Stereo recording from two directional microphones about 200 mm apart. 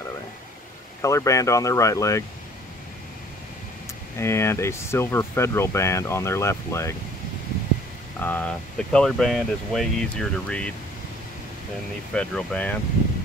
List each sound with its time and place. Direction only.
1.0 s speech: 15° left (ahead or behind)
4.2 s speech: 15° left (ahead or behind)
8.2 s speech: 10° left (ahead or behind)
12.1 s speech: 5° left (ahead or behind)